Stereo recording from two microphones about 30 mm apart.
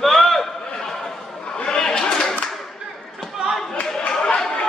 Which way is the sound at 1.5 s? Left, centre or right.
Left.